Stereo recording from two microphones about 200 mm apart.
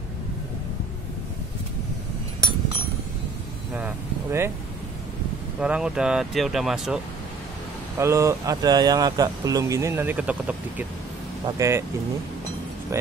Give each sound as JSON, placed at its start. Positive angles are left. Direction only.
{"t": 3.7, "sound": "vehicle", "side_deg": -10}
{"t": 5.6, "sound": "speech", "side_deg": -5}
{"t": 8.0, "sound": "speech", "side_deg": -15}
{"t": 12.9, "sound": "speech", "side_deg": -15}